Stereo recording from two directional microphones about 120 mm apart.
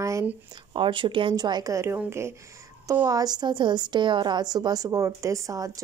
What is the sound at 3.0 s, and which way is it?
A woman's voice, 30° right (ahead or behind).